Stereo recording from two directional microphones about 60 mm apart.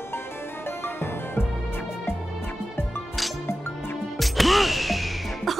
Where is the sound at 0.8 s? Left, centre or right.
Left.